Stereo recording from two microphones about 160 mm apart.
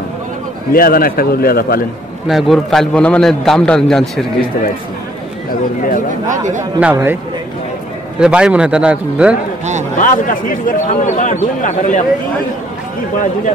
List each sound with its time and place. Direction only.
0.7 s a man's voice: 65° left (ahead or behind)
2.2 s a man's voice: centre (ahead or behind)
5.8 s a man's voice: 55° left (ahead or behind)
6.2 s speech: 50° right (ahead or behind)
6.8 s a man's voice: 10° right (ahead or behind)
8.2 s a man's voice: 5° right (ahead or behind)
9.9 s a man's voice: 55° left (ahead or behind)